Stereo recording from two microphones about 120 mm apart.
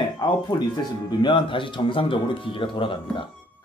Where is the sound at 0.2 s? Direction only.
40° left (ahead or behind).